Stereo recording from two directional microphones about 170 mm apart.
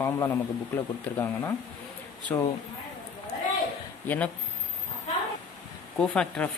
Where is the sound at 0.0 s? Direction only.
15° left (ahead or behind).